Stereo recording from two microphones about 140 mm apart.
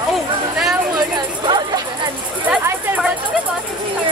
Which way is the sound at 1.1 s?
30° right (ahead or behind).